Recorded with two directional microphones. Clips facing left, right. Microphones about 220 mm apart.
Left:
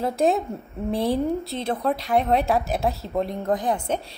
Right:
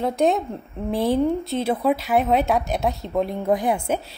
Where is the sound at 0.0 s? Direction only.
Centre (ahead or behind).